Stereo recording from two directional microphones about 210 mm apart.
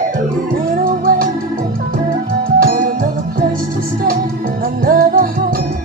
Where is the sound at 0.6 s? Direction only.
40° right (ahead or behind).